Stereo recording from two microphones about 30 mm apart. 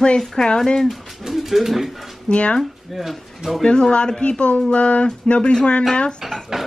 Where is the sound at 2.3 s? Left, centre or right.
Left.